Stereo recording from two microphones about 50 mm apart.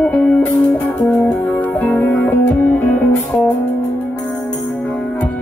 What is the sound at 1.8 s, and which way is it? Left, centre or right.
Music, left.